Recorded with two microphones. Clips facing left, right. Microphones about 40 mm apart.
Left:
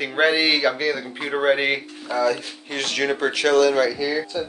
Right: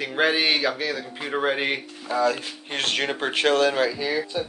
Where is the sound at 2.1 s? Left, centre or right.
Right.